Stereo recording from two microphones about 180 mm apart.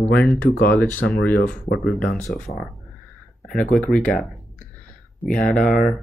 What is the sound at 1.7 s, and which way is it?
Speech, 55° left (ahead or behind).